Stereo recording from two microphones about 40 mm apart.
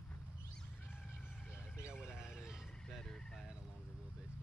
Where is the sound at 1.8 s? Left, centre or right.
Right.